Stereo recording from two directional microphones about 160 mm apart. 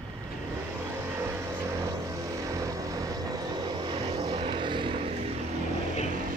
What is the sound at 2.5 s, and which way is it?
Vehicle, 20° right (ahead or behind).